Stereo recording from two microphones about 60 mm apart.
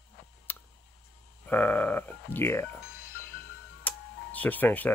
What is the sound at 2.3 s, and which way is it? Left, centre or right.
Speech, left.